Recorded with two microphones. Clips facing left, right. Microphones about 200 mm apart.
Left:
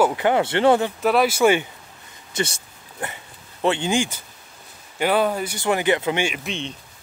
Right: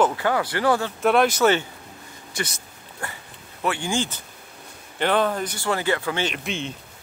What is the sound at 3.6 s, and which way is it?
Speech, 20° left (ahead or behind).